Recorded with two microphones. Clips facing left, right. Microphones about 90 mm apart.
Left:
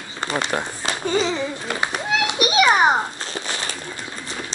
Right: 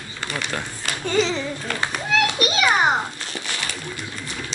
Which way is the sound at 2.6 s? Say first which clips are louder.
Even; 30° left (ahead or behind).